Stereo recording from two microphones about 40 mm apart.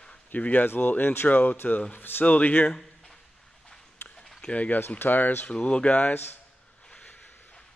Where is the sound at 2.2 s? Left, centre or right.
Left.